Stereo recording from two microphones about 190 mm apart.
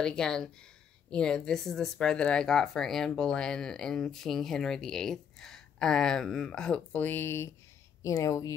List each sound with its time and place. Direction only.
0.0 s a woman's voice: 5° left (ahead or behind)